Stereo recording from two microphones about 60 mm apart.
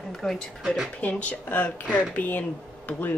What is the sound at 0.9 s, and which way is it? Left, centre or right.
Speech, left.